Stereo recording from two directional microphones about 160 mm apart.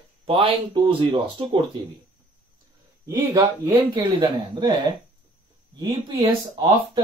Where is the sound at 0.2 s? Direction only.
30° right (ahead or behind).